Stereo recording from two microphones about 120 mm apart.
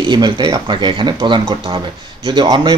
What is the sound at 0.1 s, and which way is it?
Speech, 40° right (ahead or behind).